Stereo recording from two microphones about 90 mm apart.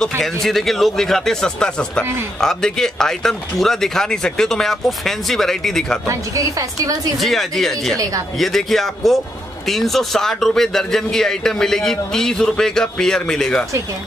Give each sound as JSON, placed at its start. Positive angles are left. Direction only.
{"t": 0.2, "sound": "a man's voice", "side_deg": 0}
{"t": 6.0, "sound": "a woman's voice", "side_deg": -40}
{"t": 7.2, "sound": "a man's voice", "side_deg": 0}